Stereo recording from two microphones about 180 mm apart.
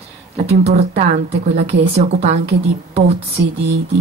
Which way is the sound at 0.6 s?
35° right (ahead or behind).